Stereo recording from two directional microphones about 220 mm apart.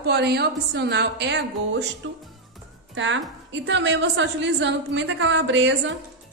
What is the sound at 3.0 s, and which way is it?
A woman's voice, 55° right (ahead or behind).